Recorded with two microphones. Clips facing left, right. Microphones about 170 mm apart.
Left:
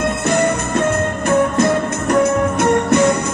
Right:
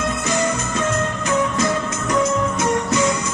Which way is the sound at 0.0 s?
60° left (ahead or behind).